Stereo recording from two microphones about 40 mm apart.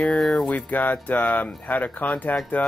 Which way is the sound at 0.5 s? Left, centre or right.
Left.